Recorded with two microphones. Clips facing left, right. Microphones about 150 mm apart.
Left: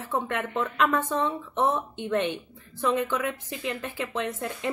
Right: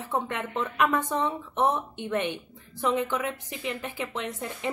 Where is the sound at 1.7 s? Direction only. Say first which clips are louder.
Left 2 dB; 15° left (ahead or behind).